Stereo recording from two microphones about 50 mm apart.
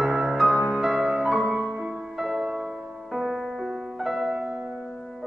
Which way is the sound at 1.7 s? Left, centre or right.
Centre.